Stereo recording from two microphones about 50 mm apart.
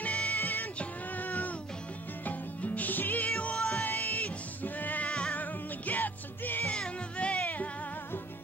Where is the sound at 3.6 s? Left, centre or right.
Centre.